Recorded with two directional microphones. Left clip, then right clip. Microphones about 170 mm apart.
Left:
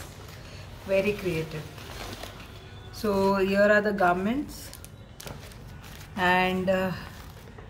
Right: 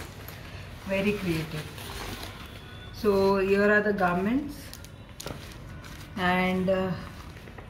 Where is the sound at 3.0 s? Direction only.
85° left.